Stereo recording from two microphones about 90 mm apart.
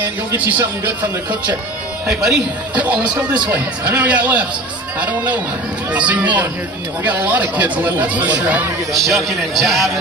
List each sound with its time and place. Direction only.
0.3 s speech: 20° right (ahead or behind)
2.0 s speech: 10° right (ahead or behind)
9.0 s speech: centre (ahead or behind)